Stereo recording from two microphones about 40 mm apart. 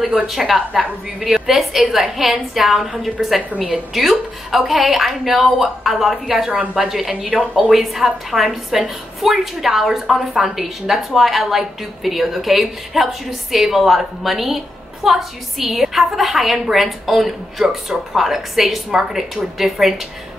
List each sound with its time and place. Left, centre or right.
0.3 s a woman's voice: centre
6.5 s a woman's voice: right
6.8 s a woman's voice: centre
7.2 s speech: right
7.7 s a woman's voice: centre